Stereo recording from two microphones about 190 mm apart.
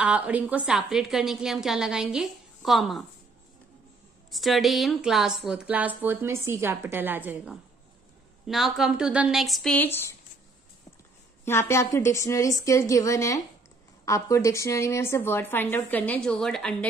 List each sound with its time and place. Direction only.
0.0 s a woman's voice: 5° right (ahead or behind)
4.3 s a woman's voice: centre (ahead or behind)
11.4 s a woman's voice: 15° left (ahead or behind)